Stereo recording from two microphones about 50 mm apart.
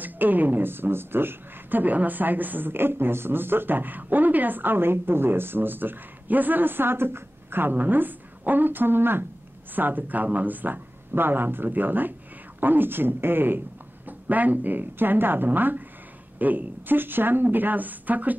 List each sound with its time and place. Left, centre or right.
0.0 s a woman's voice: right
14.0 s speech: right